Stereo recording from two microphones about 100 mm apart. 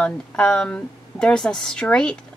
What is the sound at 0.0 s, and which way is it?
Speech, 10° left (ahead or behind).